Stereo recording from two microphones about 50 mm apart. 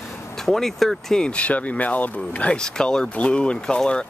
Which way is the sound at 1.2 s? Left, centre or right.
Left.